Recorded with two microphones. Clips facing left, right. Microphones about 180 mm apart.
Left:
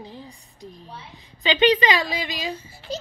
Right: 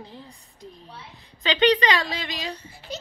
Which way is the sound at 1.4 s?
5° left (ahead or behind).